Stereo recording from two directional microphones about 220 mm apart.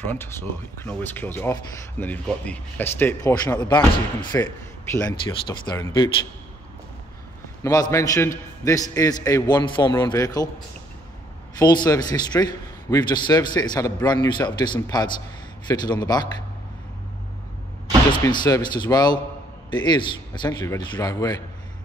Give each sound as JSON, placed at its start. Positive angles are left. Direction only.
{"t": 0.0, "sound": "speech", "side_deg": 10}
{"t": 7.6, "sound": "speech", "side_deg": 15}
{"t": 11.5, "sound": "a man's voice", "side_deg": 20}
{"t": 18.2, "sound": "a man's voice", "side_deg": 20}